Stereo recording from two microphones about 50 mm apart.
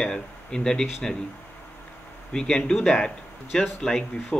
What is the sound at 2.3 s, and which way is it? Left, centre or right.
Speech, centre.